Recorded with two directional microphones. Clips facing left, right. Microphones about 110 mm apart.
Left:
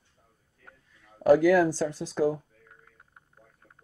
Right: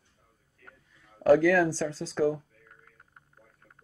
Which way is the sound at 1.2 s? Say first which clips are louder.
Left 1 dB; 15° left (ahead or behind).